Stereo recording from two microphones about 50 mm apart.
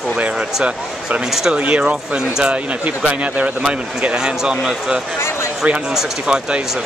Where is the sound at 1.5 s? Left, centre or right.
Right.